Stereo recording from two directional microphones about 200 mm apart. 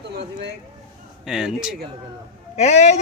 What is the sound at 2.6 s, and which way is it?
Speech, 35° left (ahead or behind).